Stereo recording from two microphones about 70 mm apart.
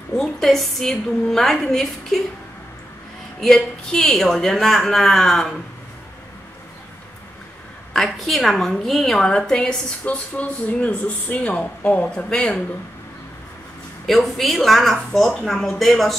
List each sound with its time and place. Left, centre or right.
0.2 s speech: centre
3.3 s speech: centre
7.9 s speech: centre
14.0 s speech: centre